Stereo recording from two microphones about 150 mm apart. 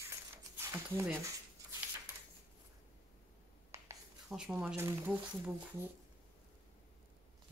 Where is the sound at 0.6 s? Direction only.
15° right (ahead or behind).